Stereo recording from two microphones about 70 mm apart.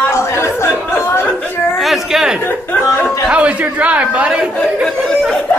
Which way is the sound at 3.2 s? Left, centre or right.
Centre.